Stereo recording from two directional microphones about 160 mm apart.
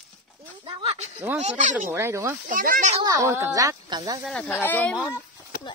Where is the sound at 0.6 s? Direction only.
40° right (ahead or behind).